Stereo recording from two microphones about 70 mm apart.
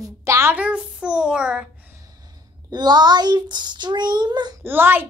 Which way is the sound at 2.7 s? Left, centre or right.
Right.